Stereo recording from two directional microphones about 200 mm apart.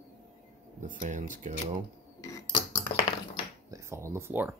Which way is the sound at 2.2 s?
15° left (ahead or behind).